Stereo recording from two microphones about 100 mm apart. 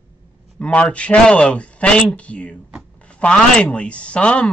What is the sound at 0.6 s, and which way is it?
Speech, 10° left (ahead or behind).